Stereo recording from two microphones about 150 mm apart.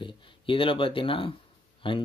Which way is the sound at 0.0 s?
35° left (ahead or behind).